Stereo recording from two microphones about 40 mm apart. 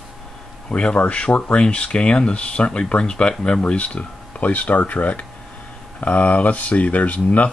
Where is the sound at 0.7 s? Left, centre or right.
Left.